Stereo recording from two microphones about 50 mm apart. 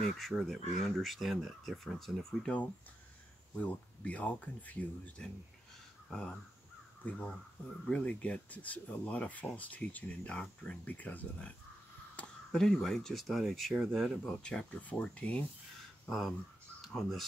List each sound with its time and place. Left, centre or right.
0.0 s speech: centre
2.4 s speech: left
6.0 s speech: centre
7.0 s speech: left
7.8 s speech: left
12.2 s a sound: left
12.5 s speech: centre
14.3 s speech: centre
14.7 s speech: left
16.1 s speech: centre